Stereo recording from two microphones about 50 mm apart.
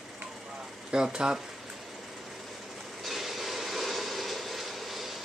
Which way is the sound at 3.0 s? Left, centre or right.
Centre.